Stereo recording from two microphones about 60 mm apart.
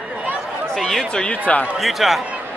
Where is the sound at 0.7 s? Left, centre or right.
Centre.